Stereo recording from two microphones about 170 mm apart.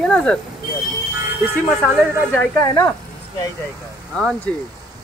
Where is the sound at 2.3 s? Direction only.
20° left (ahead or behind).